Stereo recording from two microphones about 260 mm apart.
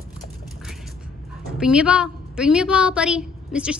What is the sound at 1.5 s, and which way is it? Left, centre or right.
A woman's voice, centre.